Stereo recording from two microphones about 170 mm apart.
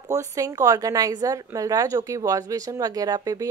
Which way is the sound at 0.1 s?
20° right (ahead or behind).